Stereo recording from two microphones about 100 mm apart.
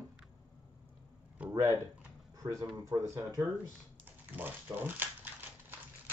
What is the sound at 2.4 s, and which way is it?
Speech, 40° right (ahead or behind).